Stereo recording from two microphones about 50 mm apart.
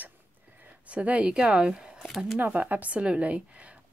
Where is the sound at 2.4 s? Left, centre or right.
Right.